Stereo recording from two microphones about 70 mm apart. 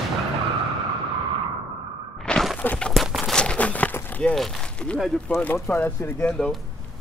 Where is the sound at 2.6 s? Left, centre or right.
Left.